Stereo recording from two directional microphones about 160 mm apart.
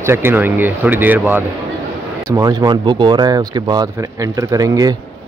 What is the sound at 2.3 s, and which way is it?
Speech, 25° right (ahead or behind).